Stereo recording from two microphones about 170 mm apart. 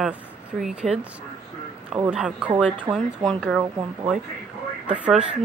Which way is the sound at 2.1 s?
5° right (ahead or behind).